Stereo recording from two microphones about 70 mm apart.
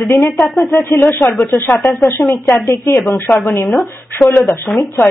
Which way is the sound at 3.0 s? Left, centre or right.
Left.